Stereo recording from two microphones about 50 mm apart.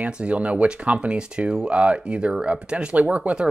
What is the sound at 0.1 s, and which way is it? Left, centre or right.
Speech, right.